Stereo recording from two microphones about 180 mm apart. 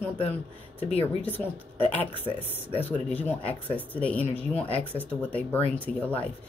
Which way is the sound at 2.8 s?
10° left (ahead or behind).